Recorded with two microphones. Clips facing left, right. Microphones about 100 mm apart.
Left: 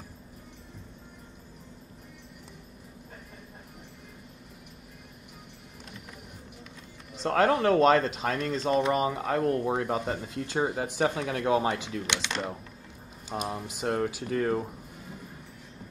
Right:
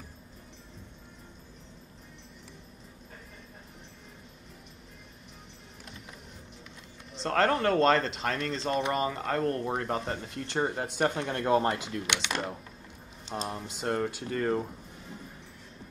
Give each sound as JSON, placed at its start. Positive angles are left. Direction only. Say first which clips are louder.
{"t": 7.2, "sound": "speech", "louder": "left 2 dB", "side_deg": 5}
{"t": 12.1, "sound": "speech", "louder": "even", "side_deg": -15}
{"t": 13.3, "sound": "speech", "louder": "left 2 dB", "side_deg": 5}